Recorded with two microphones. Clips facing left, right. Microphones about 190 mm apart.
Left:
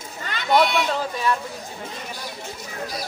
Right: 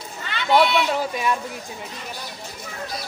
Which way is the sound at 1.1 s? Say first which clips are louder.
Even; 15° right (ahead or behind).